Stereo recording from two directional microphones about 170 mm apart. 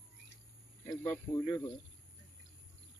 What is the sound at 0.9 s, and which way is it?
Speech, 15° left (ahead or behind).